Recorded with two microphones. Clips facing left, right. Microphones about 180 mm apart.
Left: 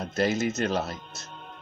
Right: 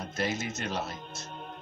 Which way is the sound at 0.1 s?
40° left (ahead or behind).